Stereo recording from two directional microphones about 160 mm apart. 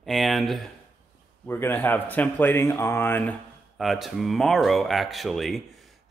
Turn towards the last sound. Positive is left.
turn(degrees=0)  # may be behind; listen again after turning